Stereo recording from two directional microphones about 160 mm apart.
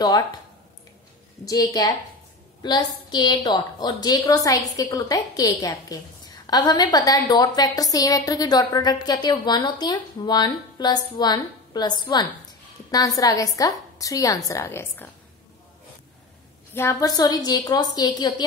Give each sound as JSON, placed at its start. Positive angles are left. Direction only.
{"t": 1.4, "sound": "a woman's voice", "side_deg": 20}
{"t": 16.7, "sound": "a woman's voice", "side_deg": 20}